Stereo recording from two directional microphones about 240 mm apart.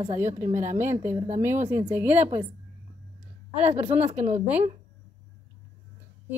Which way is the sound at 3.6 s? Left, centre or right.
Right.